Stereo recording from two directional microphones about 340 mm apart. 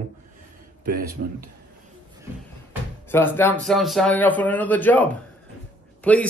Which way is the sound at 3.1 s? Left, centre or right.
Centre.